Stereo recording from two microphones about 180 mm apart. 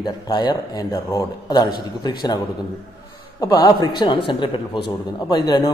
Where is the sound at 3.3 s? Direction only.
20° left (ahead or behind).